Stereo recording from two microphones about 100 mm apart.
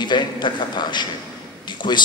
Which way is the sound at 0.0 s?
50° left (ahead or behind).